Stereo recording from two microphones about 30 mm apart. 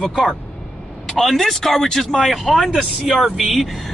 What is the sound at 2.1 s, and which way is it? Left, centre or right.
Speech, centre.